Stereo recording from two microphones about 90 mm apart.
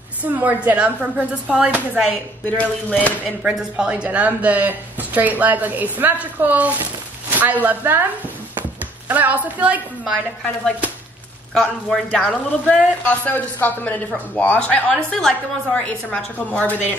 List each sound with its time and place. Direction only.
0.2 s speech: 15° right (ahead or behind)
2.5 s speech: 15° left (ahead or behind)
3.2 s speech: 10° right (ahead or behind)
9.1 s speech: 20° right (ahead or behind)
12.1 s speech: 10° left (ahead or behind)